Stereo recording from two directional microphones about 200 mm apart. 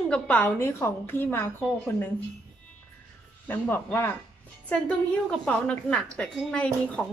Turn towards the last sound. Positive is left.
turn(degrees=5)  # may be behind; listen again after turning